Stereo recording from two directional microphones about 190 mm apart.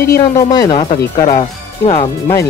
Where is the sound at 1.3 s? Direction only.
35° left (ahead or behind).